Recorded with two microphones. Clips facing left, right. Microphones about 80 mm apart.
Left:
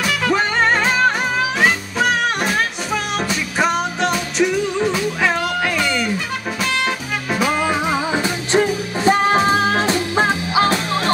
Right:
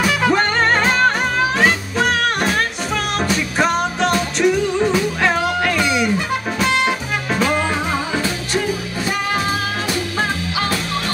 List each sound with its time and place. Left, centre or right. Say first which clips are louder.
0.0 s music: right 2 dB; centre
0.4 s music: right 1 dB; centre
5.9 s music: right 3 dB; centre
7.9 s music: left 1 dB; centre
8.5 s music: left 6 dB; left